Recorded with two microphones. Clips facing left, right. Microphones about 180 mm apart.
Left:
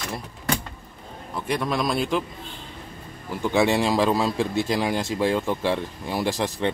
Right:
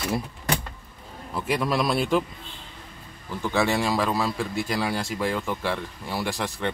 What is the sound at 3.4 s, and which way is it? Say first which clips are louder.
A man's voice: left 3 dB; 20° left (ahead or behind).